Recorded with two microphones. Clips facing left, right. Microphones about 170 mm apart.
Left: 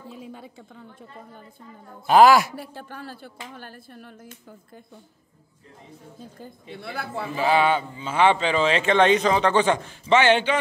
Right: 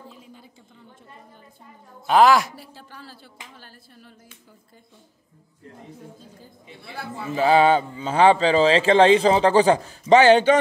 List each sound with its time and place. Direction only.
0.2 s a sound: 70° left (ahead or behind)
2.0 s speech: 5° left (ahead or behind)
2.5 s speech: 55° left (ahead or behind)
7.2 s a man's voice: 40° right (ahead or behind)